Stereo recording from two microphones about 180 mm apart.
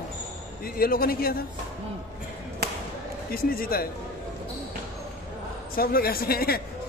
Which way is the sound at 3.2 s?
55° left (ahead or behind).